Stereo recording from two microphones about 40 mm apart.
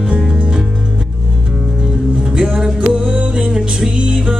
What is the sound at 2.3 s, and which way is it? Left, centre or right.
Music, right.